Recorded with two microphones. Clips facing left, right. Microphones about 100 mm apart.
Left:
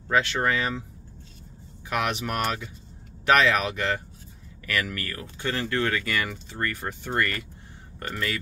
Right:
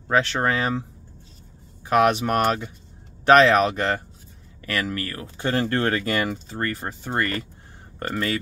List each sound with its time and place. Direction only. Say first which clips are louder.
0.1 s speech: right 2 dB; 35° right (ahead or behind)
1.9 s speech: right 9 dB; 35° right (ahead or behind)